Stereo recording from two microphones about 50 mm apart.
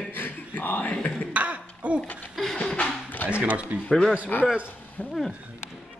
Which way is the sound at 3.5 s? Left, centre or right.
Right.